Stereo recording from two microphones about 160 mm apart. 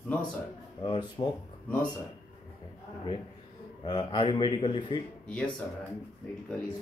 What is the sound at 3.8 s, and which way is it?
Speech, 30° left (ahead or behind).